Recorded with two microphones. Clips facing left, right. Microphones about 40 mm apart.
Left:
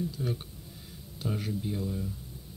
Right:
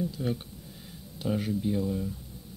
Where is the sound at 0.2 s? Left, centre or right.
Centre.